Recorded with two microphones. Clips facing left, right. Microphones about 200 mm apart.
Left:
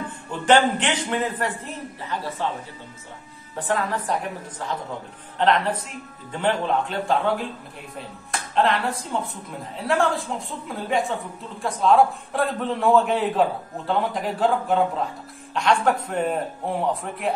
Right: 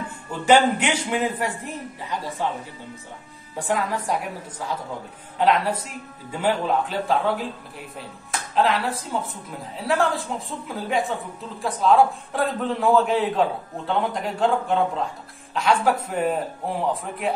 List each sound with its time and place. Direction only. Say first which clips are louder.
0.3 s a man's voice: right 1 dB; 10° right (ahead or behind)
3.5 s a man's voice: even; 10° right (ahead or behind)